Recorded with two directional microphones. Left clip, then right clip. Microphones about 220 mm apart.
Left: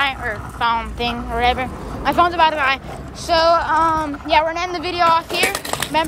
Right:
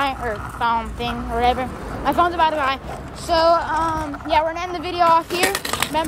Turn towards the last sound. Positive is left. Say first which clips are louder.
# left 2 dB
turn(degrees=-15)  # may be behind; listen again after turning